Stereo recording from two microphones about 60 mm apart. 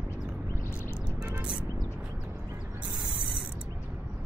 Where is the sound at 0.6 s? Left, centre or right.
Left.